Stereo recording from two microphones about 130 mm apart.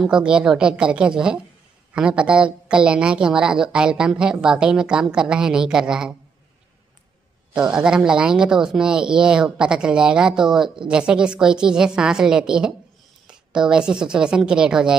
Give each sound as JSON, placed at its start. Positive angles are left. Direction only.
{"t": 0.0, "sound": "a woman's voice", "side_deg": -5}
{"t": 7.5, "sound": "a woman's voice", "side_deg": -5}